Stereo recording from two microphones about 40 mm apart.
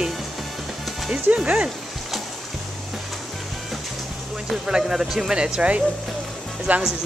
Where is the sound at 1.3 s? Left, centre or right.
Right.